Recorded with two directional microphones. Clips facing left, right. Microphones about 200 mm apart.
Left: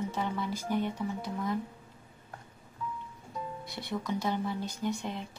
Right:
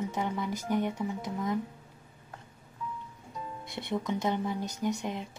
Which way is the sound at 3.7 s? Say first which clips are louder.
Right 6 dB; 50° right (ahead or behind).